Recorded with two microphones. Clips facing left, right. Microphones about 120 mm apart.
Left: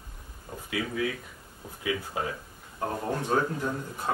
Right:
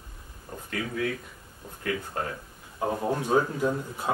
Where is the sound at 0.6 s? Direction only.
5° left (ahead or behind).